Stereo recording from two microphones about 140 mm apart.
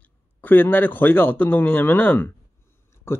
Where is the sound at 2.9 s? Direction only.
20° left (ahead or behind).